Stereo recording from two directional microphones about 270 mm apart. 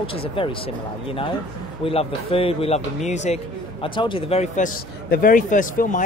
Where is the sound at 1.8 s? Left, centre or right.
Centre.